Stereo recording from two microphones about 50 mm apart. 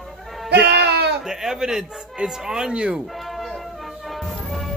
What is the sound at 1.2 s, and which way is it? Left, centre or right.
Speech, centre.